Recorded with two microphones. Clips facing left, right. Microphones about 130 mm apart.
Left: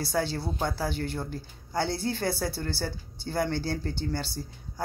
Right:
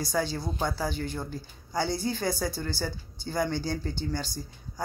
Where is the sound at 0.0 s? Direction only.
65° left (ahead or behind).